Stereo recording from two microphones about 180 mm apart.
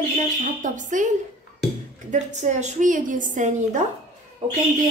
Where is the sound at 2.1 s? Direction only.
40° right (ahead or behind).